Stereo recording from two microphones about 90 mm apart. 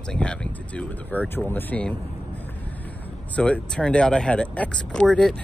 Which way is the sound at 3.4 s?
10° left (ahead or behind).